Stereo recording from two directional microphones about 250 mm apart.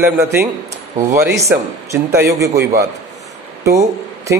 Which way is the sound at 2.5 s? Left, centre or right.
Right.